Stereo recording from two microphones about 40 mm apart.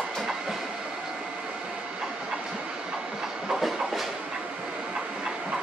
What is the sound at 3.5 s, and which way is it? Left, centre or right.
Train, centre.